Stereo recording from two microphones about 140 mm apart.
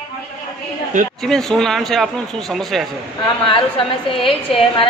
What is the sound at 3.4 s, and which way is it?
A woman's voice, 40° left (ahead or behind).